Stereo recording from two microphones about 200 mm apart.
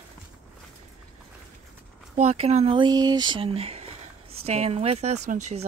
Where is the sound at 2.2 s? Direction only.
35° right (ahead or behind).